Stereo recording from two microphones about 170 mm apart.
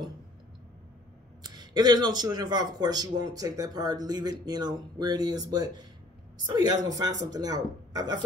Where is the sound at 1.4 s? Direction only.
25° right (ahead or behind).